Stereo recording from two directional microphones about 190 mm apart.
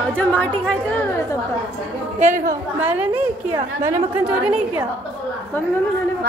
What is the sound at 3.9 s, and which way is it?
Speech, 5° right (ahead or behind).